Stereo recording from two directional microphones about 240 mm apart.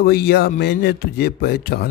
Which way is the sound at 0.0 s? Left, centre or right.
Left.